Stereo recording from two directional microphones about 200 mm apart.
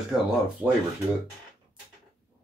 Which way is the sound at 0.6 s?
5° right (ahead or behind).